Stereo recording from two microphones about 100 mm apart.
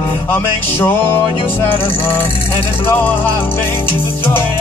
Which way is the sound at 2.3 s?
65° left (ahead or behind).